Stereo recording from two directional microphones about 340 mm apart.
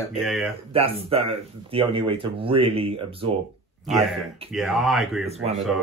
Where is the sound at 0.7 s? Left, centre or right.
Centre.